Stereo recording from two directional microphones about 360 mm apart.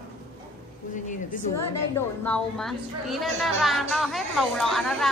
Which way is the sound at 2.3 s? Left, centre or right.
Centre.